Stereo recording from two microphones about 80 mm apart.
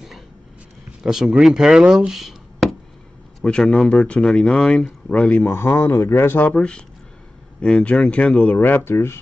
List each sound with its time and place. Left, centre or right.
1.0 s speech: centre
3.3 s speech: centre
4.2 s speech: centre
5.7 s speech: left